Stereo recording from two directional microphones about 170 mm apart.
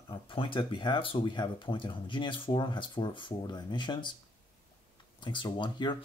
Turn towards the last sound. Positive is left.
turn(degrees=25)  # may be behind; listen again after turning